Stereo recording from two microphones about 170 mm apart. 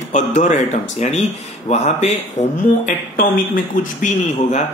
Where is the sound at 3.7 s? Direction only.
50° left (ahead or behind).